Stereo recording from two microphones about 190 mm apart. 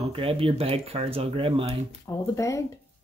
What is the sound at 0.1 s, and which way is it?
Speech, 30° right (ahead or behind).